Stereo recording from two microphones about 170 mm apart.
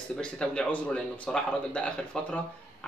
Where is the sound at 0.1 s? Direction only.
5° left (ahead or behind).